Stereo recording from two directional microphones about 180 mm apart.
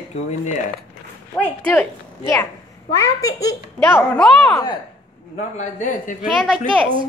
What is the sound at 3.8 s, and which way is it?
Speech, 5° left (ahead or behind).